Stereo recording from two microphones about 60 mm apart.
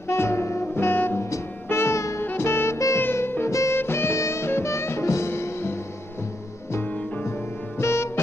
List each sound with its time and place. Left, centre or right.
0.1 s music: left
2.2 s saxophone: left
3.0 s music: left
7.8 s music: left